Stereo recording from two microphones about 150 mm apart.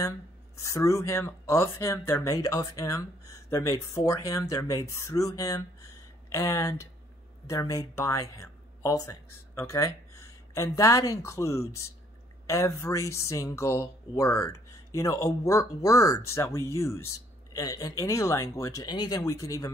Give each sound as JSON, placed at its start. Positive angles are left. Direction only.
{"t": 0.6, "sound": "speech", "side_deg": 20}